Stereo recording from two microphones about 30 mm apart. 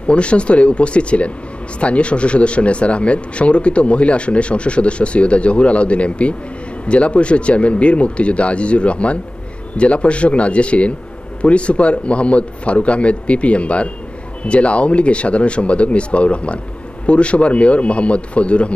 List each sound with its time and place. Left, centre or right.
0.0 s a man's voice: left